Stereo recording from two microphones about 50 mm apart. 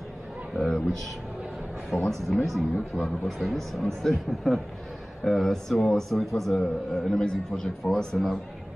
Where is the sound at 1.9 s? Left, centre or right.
Centre.